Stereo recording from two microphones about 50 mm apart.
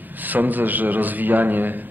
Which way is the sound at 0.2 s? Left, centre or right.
Right.